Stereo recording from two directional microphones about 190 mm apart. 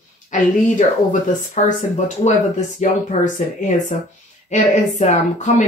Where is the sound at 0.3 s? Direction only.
40° left (ahead or behind).